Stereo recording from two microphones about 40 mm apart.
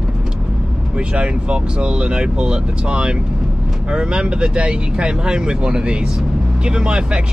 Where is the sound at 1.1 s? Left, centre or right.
Right.